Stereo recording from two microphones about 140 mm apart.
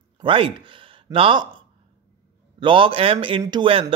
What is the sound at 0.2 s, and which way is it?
Speech, 40° right (ahead or behind).